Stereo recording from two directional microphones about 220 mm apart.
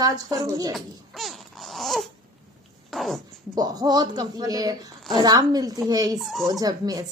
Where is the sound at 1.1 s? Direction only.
Centre (ahead or behind).